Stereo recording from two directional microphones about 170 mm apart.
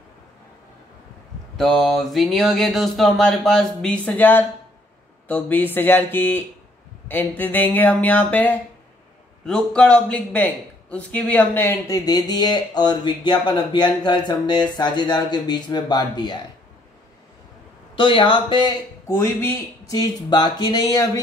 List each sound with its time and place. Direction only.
1.6 s a sound: centre (ahead or behind)
5.3 s a man's voice: 10° left (ahead or behind)
17.9 s a man's voice: 30° left (ahead or behind)
19.0 s a man's voice: 15° left (ahead or behind)